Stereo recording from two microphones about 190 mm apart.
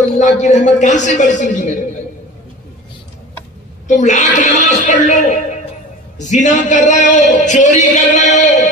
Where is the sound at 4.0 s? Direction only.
40° left (ahead or behind).